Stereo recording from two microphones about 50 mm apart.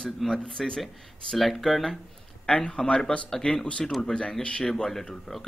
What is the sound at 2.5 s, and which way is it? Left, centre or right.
A man's voice, centre.